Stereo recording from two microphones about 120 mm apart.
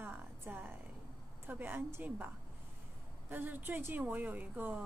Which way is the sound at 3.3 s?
15° right (ahead or behind).